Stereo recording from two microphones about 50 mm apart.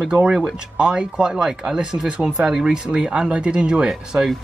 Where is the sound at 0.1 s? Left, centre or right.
Centre.